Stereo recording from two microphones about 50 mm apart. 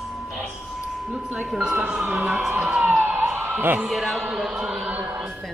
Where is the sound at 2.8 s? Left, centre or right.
Right.